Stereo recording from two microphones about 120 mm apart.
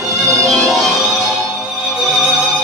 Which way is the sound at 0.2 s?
25° right (ahead or behind).